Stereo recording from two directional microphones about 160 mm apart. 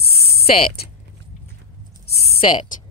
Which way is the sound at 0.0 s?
80° left.